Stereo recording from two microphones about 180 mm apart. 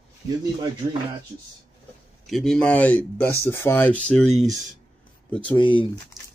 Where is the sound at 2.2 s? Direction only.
Centre (ahead or behind).